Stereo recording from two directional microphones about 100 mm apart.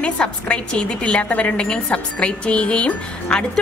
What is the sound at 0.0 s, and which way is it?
A woman's voice, 10° left (ahead or behind).